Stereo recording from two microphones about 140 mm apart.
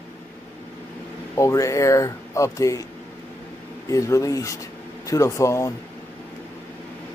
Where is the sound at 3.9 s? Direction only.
25° left (ahead or behind).